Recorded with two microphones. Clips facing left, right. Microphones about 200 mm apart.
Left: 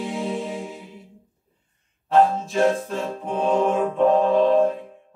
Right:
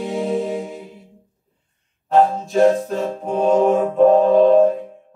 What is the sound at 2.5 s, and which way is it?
Music, 40° right (ahead or behind).